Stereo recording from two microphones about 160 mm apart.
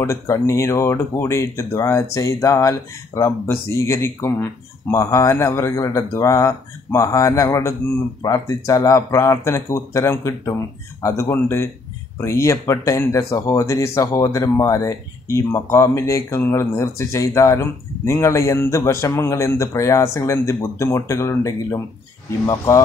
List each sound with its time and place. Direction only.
0.0 s speech: 20° left (ahead or behind)